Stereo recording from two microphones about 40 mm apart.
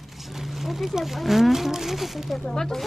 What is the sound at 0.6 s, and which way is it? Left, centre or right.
Speech, centre.